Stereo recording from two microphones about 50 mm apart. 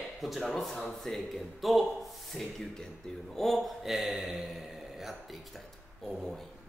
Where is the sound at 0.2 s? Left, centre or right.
Centre.